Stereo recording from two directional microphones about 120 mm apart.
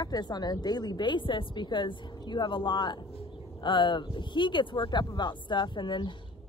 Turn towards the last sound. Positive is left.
turn(degrees=40)  # may be behind; listen again after turning